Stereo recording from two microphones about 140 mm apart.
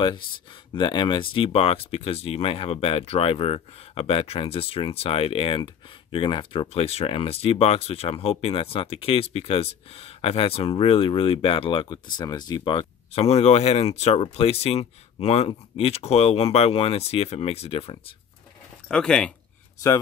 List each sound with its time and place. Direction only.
0.7 s speech: 35° left (ahead or behind)
18.9 s speech: 5° left (ahead or behind)